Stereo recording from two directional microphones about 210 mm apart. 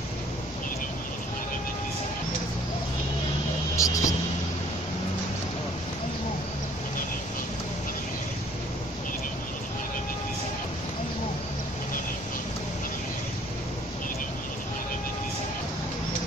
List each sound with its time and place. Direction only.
3.7 s vehicle: 15° left (ahead or behind)